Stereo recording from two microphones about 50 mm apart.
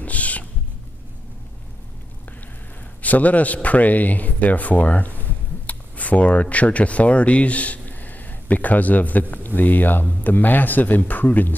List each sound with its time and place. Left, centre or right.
0.0 s owl: left
3.0 s speech: left